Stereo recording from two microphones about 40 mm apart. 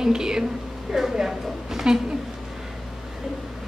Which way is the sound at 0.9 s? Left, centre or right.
Centre.